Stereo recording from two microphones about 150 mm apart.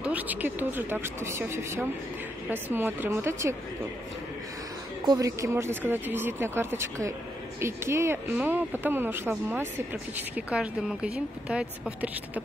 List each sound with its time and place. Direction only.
0.0 s speech: 10° right (ahead or behind)
5.0 s speech: 25° right (ahead or behind); by 12.1 s 5° right (ahead or behind)